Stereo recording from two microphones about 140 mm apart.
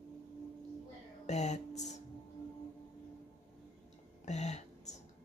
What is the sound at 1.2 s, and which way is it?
Music, 55° left (ahead or behind).